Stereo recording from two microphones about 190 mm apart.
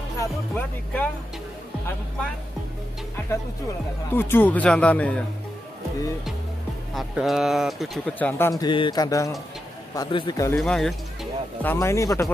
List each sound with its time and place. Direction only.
0.2 s speech: 10° left (ahead or behind)
4.1 s speech: 10° left (ahead or behind)
6.9 s speech: centre (ahead or behind); by 10.6 s 15° left (ahead or behind)
10.6 s speech: centre (ahead or behind)
11.6 s speech: 15° left (ahead or behind)